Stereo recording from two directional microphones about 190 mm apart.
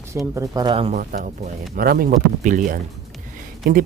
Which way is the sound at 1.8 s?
50° right (ahead or behind).